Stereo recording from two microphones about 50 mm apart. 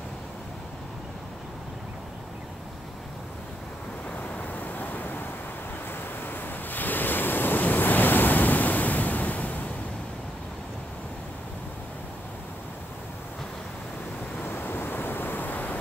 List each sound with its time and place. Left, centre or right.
4.3 s vehicle: left
5.9 s waves: left
14.4 s waves: left